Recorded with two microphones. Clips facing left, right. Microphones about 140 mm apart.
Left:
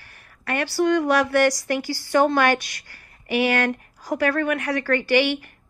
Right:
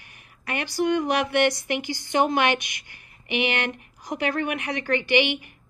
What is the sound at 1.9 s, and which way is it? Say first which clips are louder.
Speech: left 4 dB; 20° right (ahead or behind).